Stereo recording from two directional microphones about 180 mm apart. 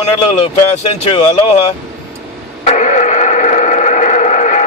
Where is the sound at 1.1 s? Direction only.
35° left (ahead or behind).